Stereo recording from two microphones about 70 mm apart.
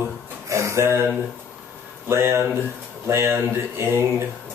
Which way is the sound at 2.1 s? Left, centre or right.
Right.